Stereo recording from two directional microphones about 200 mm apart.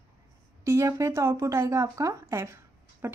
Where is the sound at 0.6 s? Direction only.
15° right (ahead or behind).